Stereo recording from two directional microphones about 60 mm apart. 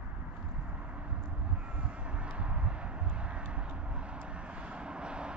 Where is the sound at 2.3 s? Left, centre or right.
Centre.